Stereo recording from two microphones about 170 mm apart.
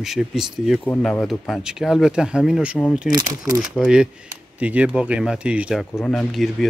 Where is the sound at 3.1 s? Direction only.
20° right (ahead or behind).